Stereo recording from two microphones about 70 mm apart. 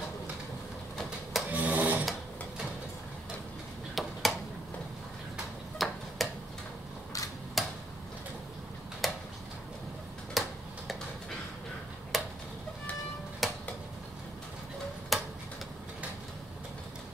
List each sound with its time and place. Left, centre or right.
1.5 s wood: right
3.9 s a sound: centre
5.8 s tick-tock: centre
7.6 s tick-tock: centre
9.0 s a sound: centre
10.4 s tick-tock: centre
12.1 s a sound: centre
13.4 s tick-tock: centre
15.1 s tick-tock: centre